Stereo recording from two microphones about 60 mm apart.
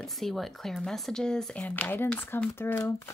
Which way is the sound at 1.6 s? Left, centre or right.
Left.